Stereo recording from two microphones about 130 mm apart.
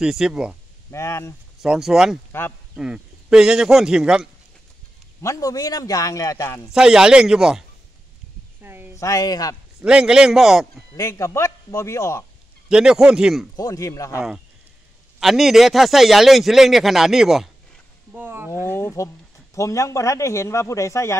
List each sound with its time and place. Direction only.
0.0 s a man's voice: 5° right (ahead or behind)
0.9 s speech: 20° left (ahead or behind)
1.6 s a man's voice: 5° right (ahead or behind)
5.2 s speech: 25° left (ahead or behind)
6.7 s a man's voice: 5° right (ahead or behind)
8.6 s a sound: 15° right (ahead or behind)
8.9 s speech: 25° left (ahead or behind)
9.8 s a man's voice: 5° right (ahead or behind)
11.0 s speech: 20° left (ahead or behind)
12.6 s a man's voice: 5° right (ahead or behind)
13.6 s speech: 25° left (ahead or behind)
15.1 s a man's voice: centre (ahead or behind)
18.1 s a sound: 15° right (ahead or behind)
18.8 s speech: 20° left (ahead or behind)